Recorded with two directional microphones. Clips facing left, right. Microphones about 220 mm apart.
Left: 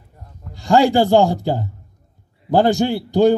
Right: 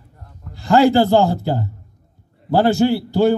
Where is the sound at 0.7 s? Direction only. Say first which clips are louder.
Right 1 dB; 15° left (ahead or behind).